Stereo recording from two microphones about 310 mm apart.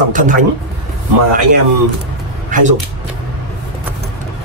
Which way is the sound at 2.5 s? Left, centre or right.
Right.